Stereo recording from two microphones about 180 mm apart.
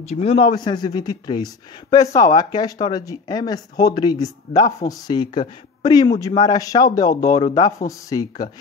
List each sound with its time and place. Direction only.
0.0 s a man's voice: 35° left (ahead or behind)
0.6 s speech: 20° left (ahead or behind)